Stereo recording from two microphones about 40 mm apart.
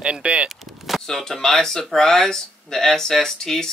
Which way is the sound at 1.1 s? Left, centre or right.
Centre.